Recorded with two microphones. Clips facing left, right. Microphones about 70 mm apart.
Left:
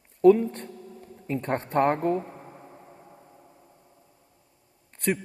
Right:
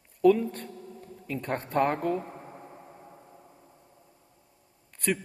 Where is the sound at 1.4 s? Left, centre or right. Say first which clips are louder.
Left 3 dB; left.